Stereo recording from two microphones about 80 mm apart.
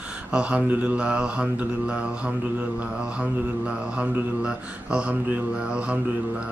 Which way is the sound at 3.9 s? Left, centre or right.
Centre.